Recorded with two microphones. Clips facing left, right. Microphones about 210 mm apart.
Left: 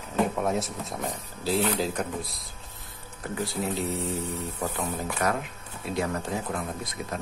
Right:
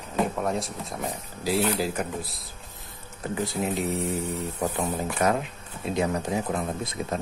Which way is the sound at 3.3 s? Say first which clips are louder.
Right 2 dB; 20° right (ahead or behind).